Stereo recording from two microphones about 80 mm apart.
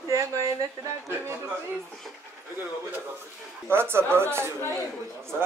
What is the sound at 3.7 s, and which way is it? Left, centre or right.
Speech, right.